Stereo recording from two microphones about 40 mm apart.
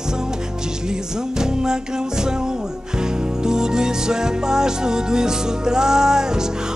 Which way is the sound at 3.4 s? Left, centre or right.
Centre.